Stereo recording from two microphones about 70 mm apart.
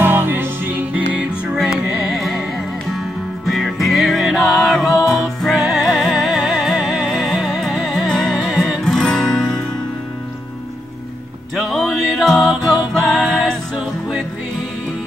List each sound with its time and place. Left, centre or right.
0.0 s music: right
0.9 s music: centre
11.5 s music: centre